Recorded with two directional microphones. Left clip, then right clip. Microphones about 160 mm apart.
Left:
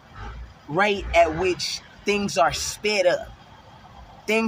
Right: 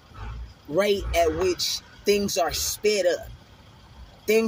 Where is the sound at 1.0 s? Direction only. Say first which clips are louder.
Left 3 dB; 5° left (ahead or behind).